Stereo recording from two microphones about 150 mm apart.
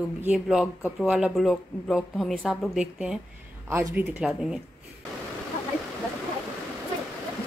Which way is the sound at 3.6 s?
15° right (ahead or behind).